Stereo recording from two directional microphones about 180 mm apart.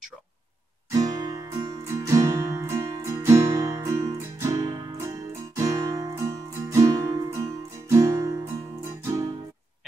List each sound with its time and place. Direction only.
0.9 s music: 20° right (ahead or behind)